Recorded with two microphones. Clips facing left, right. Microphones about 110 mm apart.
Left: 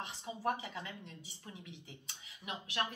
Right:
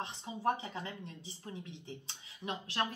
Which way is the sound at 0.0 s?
30° right (ahead or behind).